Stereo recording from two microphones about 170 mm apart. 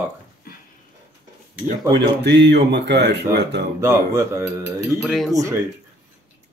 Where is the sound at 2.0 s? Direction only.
90° right.